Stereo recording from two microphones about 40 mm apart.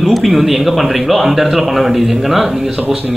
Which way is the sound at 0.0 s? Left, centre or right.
Centre.